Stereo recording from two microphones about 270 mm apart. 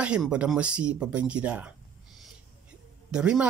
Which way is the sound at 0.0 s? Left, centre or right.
Centre.